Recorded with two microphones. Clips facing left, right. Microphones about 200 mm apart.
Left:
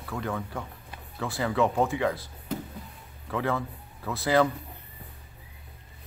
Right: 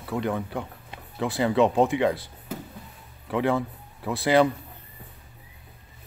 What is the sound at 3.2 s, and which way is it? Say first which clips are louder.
Speech: right 5 dB; 15° right (ahead or behind).